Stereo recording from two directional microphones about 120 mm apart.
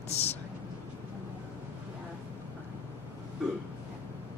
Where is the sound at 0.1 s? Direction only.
60° left (ahead or behind).